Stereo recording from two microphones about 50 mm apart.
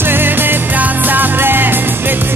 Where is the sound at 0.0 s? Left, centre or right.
Right.